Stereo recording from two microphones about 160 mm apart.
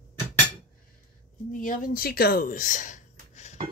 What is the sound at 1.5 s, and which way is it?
Speech, 55° left (ahead or behind).